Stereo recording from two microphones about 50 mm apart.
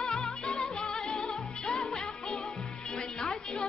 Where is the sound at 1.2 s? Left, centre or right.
Centre.